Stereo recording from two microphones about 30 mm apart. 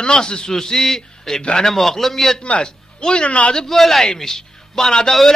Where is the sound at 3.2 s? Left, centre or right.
Left.